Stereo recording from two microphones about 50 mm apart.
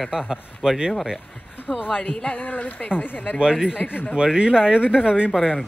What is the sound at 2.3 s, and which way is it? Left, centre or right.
A woman's voice, left.